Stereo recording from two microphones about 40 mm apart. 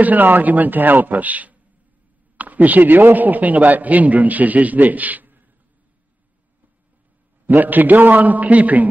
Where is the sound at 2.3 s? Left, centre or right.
Right.